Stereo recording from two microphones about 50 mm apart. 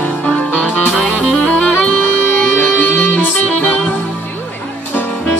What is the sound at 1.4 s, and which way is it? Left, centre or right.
Music, left.